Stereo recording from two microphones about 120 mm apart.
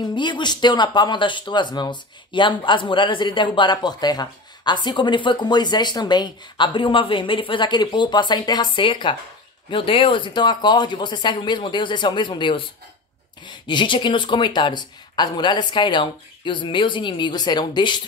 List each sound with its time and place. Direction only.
0.0 s speech: 40° left (ahead or behind)